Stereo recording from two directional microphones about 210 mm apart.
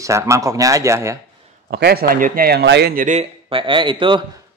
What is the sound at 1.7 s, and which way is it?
Speech, 50° right (ahead or behind).